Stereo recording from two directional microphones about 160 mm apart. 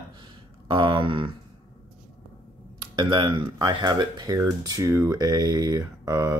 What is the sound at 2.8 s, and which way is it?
Speech, 30° right (ahead or behind).